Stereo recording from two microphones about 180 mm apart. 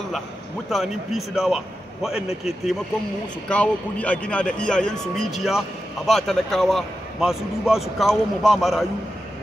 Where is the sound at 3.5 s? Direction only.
5° left (ahead or behind).